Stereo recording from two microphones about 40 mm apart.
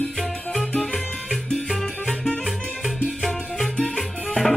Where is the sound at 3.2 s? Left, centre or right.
Centre.